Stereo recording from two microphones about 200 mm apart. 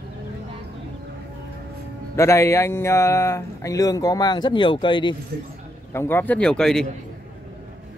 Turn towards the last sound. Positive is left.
turn(degrees=5)  # may be behind; listen again after turning